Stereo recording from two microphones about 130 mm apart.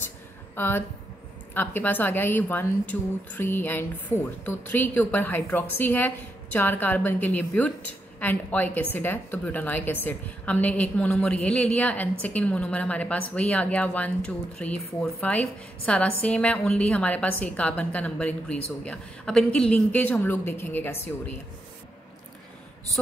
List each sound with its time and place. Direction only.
0.6 s a woman's voice: 15° left (ahead or behind)